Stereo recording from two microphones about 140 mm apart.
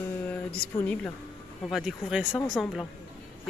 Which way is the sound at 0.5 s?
10° left (ahead or behind).